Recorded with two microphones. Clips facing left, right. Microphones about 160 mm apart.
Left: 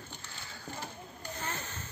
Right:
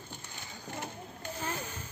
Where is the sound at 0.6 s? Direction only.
15° right (ahead or behind).